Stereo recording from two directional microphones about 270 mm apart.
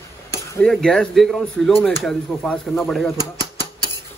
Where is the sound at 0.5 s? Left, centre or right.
Centre.